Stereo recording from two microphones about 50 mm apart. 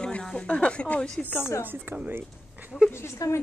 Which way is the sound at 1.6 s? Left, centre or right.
Right.